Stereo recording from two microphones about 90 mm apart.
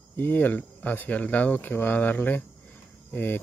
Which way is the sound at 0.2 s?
20° left (ahead or behind).